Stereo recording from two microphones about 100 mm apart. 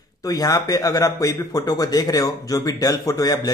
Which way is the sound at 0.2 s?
35° left (ahead or behind).